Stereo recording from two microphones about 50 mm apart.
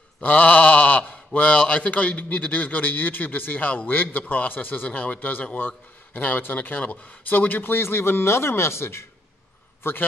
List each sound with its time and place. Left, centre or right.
0.2 s speech: left
7.7 s speech: left